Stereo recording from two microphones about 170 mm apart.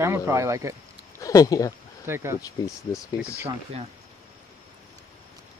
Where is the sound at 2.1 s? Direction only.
15° right (ahead or behind).